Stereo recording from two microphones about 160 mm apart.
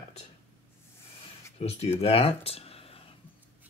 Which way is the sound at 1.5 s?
40° left (ahead or behind).